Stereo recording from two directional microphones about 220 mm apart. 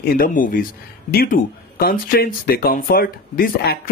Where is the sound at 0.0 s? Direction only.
40° left (ahead or behind).